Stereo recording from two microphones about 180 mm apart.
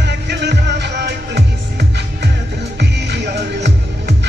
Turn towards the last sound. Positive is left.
turn(degrees=-70)  # may be behind; listen again after turning